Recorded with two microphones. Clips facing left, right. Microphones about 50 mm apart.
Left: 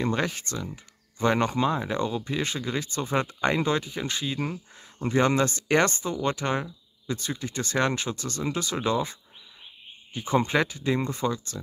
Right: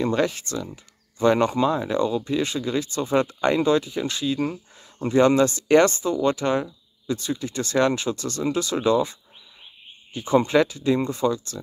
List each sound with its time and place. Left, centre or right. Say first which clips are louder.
0.0 s speech: right 5 dB; left
10.1 s speech: right 5 dB; left